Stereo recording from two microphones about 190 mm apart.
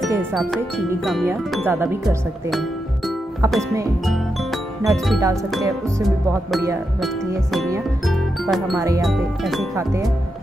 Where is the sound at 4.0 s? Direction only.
Centre (ahead or behind).